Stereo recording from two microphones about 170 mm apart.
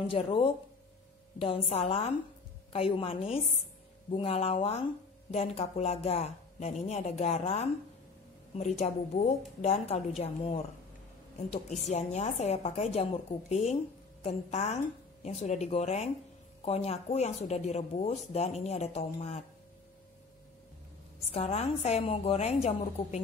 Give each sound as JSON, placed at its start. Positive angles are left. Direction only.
{"t": 0.0, "sound": "speech", "side_deg": 30}
{"t": 21.3, "sound": "speech", "side_deg": 35}